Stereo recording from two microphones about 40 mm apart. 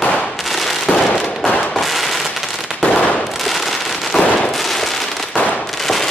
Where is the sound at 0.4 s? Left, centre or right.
Centre.